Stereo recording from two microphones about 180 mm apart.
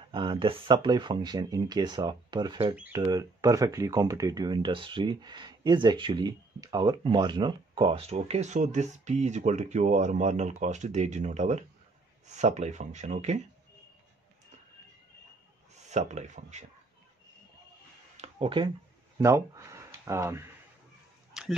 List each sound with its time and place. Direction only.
0.1 s speech: 25° right (ahead or behind)
15.9 s speech: 40° right (ahead or behind)
18.1 s a sound: 35° right (ahead or behind)
19.1 s speech: 15° right (ahead or behind)
21.3 s dog: centre (ahead or behind)